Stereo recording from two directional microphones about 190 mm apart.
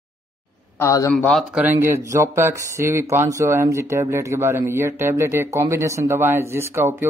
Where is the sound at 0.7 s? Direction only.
15° left (ahead or behind).